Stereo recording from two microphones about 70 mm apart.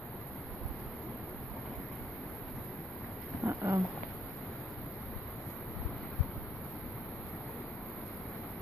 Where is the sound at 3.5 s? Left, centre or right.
Right.